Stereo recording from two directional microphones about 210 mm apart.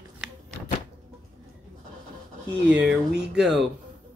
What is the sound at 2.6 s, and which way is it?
Speech, 5° right (ahead or behind).